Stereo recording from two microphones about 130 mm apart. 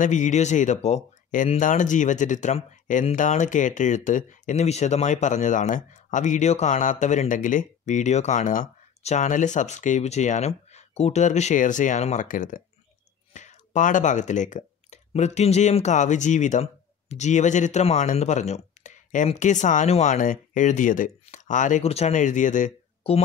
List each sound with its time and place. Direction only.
0.0 s speech: 75° left (ahead or behind); by 12.6 s 90° left
13.3 s speech: 70° left (ahead or behind)
21.8 s speech: 55° left (ahead or behind); by 22.7 s 75° left (ahead or behind)
23.0 s speech: 50° left (ahead or behind)